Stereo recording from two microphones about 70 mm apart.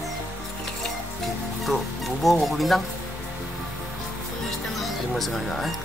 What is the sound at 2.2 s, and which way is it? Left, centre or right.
Speech, centre.